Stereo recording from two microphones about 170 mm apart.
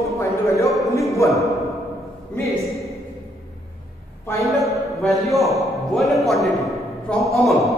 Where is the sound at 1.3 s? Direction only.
Centre (ahead or behind).